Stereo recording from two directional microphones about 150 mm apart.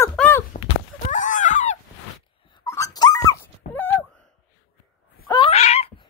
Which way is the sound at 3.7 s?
15° left (ahead or behind).